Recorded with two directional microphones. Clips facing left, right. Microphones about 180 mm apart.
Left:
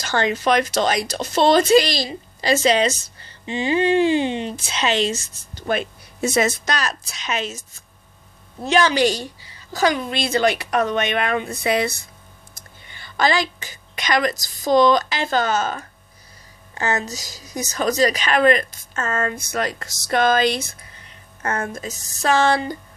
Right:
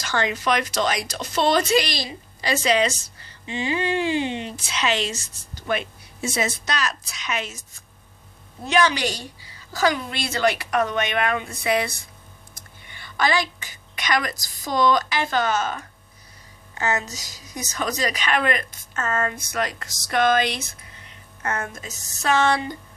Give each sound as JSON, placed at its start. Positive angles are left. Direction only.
{"t": 0.0, "sound": "a woman's voice", "side_deg": 30}
{"t": 8.6, "sound": "speech", "side_deg": 30}
{"t": 12.9, "sound": "a sound", "side_deg": 30}
{"t": 14.0, "sound": "a woman's voice", "side_deg": 25}